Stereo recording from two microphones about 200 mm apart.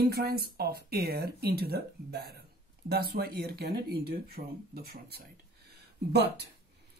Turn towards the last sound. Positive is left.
turn(degrees=-55)  # may be behind; listen again after turning